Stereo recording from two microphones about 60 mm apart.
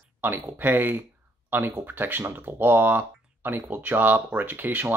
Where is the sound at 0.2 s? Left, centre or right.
Right.